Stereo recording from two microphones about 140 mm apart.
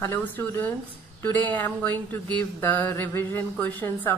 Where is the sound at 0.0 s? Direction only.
15° left (ahead or behind).